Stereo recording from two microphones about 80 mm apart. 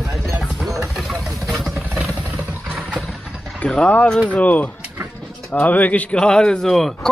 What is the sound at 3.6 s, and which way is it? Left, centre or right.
Pulleys, centre.